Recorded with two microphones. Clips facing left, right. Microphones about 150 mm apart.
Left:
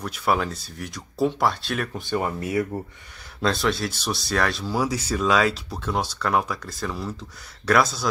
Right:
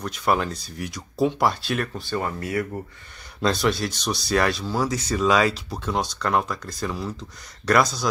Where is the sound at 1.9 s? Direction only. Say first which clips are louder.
Left 2 dB; 15° left (ahead or behind).